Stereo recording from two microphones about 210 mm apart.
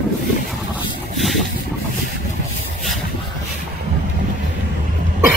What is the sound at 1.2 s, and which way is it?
Vehicle, centre (ahead or behind).